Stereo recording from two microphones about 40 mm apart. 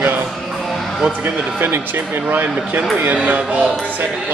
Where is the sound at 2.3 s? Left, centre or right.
Right.